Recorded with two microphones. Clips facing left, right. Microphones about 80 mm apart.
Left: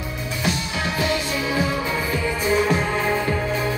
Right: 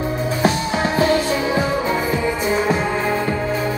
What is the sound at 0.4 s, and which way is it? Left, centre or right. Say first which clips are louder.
Music: right 6 dB; right.